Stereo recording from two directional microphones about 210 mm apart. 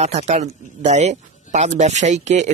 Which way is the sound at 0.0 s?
30° right (ahead or behind).